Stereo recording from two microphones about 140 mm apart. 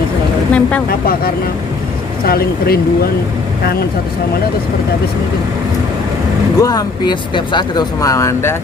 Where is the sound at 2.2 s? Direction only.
90° left.